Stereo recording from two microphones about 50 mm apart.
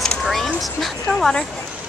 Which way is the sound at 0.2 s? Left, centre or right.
Centre.